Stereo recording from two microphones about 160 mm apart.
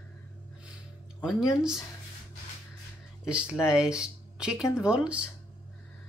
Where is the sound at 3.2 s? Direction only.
5° right (ahead or behind).